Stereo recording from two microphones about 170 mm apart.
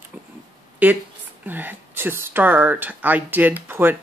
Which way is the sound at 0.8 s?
10° right (ahead or behind).